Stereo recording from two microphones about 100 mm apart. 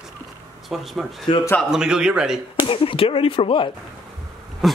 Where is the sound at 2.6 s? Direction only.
60° left (ahead or behind).